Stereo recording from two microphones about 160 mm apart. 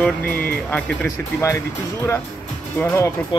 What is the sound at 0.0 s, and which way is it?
Speech, 10° left (ahead or behind).